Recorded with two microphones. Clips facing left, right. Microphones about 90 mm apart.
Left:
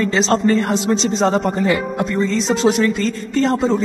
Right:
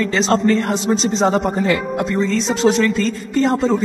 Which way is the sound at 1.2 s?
Centre (ahead or behind).